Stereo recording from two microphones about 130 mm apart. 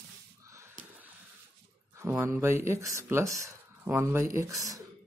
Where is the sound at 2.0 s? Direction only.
20° right (ahead or behind).